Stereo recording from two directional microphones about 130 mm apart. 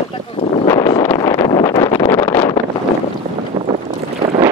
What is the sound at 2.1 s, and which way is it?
Wind noise, 15° left (ahead or behind).